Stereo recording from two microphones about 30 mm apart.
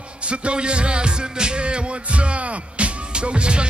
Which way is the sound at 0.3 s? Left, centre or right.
Right.